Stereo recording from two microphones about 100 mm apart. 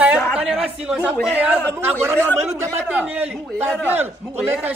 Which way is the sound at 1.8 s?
20° right (ahead or behind).